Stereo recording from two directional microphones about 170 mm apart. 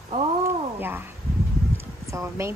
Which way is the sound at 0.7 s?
10° right (ahead or behind).